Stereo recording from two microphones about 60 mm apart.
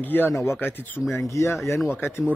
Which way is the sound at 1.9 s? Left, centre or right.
Left.